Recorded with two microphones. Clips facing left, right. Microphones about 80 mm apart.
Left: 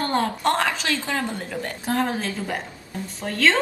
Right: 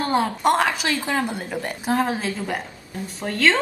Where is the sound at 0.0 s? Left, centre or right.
Centre.